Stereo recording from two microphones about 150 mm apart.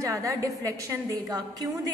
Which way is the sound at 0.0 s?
20° right (ahead or behind).